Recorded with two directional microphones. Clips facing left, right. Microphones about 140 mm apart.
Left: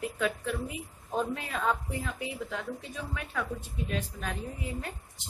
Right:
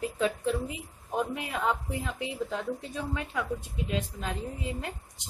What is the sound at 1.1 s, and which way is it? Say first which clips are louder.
A woman's voice: right 1 dB; 15° right (ahead or behind).